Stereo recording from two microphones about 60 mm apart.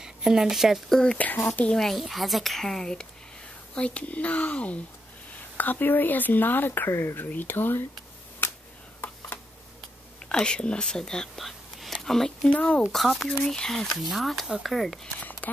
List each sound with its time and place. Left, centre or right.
0.0 s speech: centre
0.8 s speech: centre
1.1 s speech: left
1.7 s speech: centre
3.7 s speech: centre; by 6.9 s left
6.9 s speech: left
7.2 s speech: left
9.0 s a sound: left
10.4 s speech: centre
11.3 s whispering: centre
12.4 s speech: centre
12.8 s speech: centre
15.4 s speech: left